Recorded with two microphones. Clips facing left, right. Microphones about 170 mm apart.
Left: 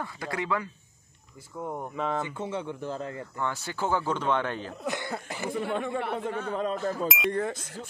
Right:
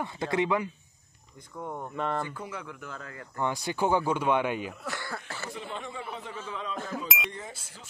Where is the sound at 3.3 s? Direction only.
15° right (ahead or behind).